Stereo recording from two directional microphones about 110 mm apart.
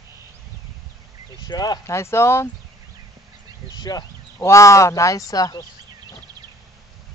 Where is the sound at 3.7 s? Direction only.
35° left (ahead or behind).